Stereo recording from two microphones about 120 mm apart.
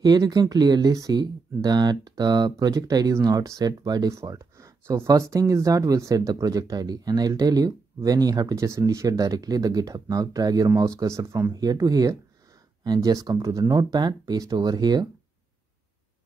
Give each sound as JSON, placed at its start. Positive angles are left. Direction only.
{"t": 0.0, "sound": "speech", "side_deg": -30}